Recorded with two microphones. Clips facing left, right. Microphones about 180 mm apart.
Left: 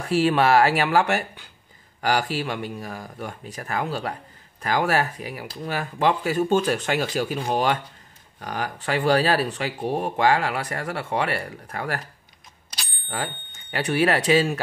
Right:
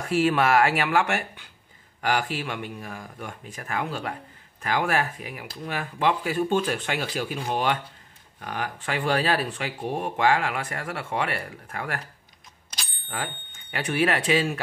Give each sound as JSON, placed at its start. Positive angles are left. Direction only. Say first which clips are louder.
{"t": 0.0, "sound": "speech", "louder": "left 2 dB", "side_deg": 30}
{"t": 13.1, "sound": "speech", "louder": "left 3 dB", "side_deg": 35}